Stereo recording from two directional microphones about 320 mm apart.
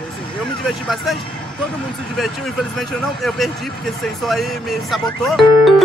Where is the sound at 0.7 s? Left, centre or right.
Centre.